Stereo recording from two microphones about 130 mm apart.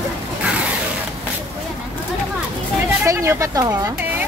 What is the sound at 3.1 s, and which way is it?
Speech, 25° right (ahead or behind).